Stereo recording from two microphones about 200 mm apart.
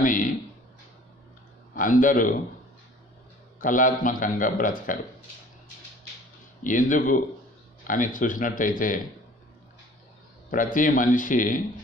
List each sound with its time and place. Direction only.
0.0 s speech: 40° left (ahead or behind)
1.8 s a man's voice: 40° left (ahead or behind)
3.5 s a man's voice: 40° left (ahead or behind)
6.6 s a man's voice: 40° left (ahead or behind)
10.5 s a man's voice: 40° left (ahead or behind)